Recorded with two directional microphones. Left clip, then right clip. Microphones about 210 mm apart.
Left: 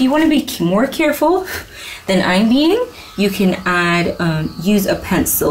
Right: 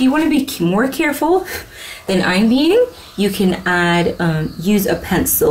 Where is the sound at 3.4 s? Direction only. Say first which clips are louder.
Even; 5° left (ahead or behind).